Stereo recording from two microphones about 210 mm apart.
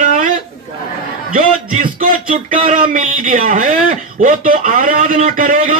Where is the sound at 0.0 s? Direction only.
40° right (ahead or behind).